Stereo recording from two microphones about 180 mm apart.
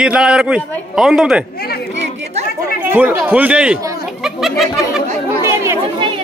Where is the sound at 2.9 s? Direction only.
10° right (ahead or behind).